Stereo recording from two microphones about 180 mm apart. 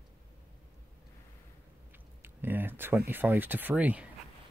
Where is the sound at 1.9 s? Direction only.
10° right (ahead or behind).